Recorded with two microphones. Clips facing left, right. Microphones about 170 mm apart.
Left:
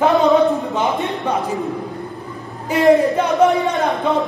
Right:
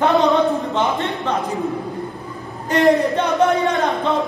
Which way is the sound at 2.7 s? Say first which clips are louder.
Left 2 dB; centre (ahead or behind).